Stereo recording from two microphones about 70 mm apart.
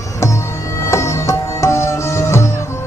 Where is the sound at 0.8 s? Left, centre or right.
Left.